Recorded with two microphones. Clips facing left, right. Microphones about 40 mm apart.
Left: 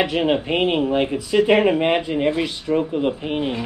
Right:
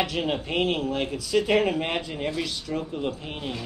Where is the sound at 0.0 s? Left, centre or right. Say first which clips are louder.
Left 7 dB; left.